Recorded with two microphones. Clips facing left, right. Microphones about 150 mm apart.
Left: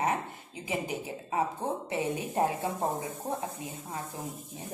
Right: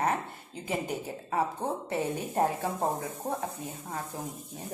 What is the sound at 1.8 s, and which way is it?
Speech, 15° left (ahead or behind).